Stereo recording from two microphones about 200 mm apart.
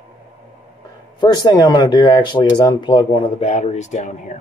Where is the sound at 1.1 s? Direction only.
20° left (ahead or behind).